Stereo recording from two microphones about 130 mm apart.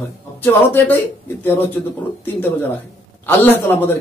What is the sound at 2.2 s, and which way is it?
Speech, 15° left (ahead or behind).